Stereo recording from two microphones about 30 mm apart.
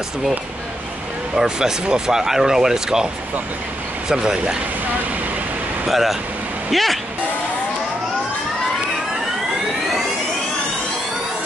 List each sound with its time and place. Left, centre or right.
1.6 s speech: right
4.1 s speech: right
5.9 s speech: centre